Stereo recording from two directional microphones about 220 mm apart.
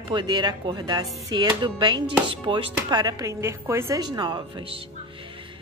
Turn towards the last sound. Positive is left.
turn(degrees=-20)  # may be behind; listen again after turning